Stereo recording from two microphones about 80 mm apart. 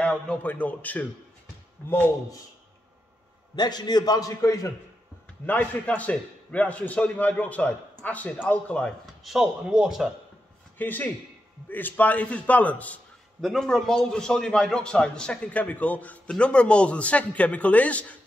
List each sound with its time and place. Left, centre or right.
0.0 s a man's voice: centre
3.5 s a man's voice: left
4.4 s a man's voice: left
5.5 s a man's voice: centre
9.2 s speech: centre
10.8 s a man's voice: left
13.4 s a man's voice: centre